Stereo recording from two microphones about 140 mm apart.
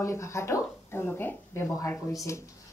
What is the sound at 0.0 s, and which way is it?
Speech, 20° left (ahead or behind).